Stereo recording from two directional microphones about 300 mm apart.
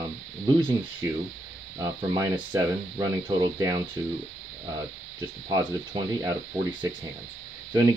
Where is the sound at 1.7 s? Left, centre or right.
Centre.